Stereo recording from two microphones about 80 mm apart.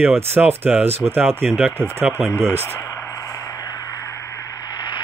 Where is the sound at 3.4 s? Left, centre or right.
Left.